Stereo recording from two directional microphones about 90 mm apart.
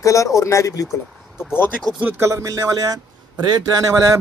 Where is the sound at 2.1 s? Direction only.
35° right (ahead or behind).